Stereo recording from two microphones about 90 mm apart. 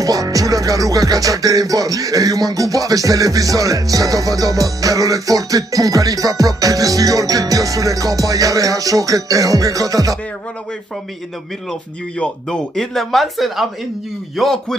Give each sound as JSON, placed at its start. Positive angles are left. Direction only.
{"t": 0.0, "sound": "music", "side_deg": -40}
{"t": 12.2, "sound": "speech", "side_deg": 10}